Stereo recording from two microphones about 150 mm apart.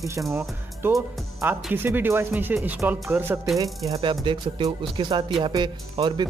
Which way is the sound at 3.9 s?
35° right (ahead or behind).